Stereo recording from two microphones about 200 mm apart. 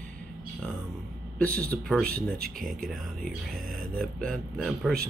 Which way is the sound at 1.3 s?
5° left (ahead or behind).